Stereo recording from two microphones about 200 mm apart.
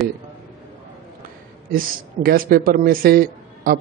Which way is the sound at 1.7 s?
45° right (ahead or behind).